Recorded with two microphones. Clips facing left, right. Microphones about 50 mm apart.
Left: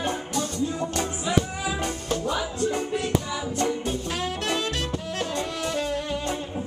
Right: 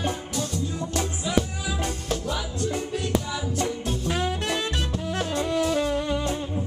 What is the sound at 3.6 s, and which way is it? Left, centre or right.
Music, centre.